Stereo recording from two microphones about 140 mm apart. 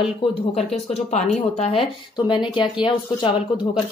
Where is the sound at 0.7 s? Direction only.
50° left (ahead or behind); by 3.4 s 35° left (ahead or behind).